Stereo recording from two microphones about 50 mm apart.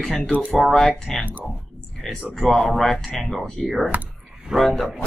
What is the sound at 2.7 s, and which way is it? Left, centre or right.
Speech, centre.